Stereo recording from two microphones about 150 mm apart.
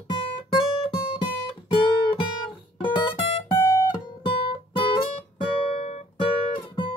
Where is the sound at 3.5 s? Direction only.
20° left (ahead or behind).